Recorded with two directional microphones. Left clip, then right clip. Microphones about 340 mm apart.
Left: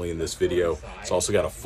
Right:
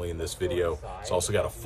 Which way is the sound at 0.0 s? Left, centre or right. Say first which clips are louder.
Left 5 dB; centre.